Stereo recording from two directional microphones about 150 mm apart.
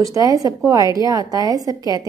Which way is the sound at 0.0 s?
25° right (ahead or behind).